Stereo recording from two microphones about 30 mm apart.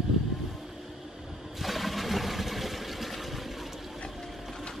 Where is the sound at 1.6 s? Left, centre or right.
Centre.